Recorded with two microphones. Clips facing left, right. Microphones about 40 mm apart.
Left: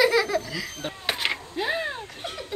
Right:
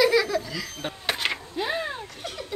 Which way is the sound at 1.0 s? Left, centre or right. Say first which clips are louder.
Even; centre.